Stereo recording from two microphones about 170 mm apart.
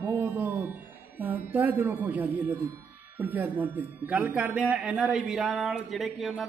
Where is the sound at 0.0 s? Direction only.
10° right (ahead or behind).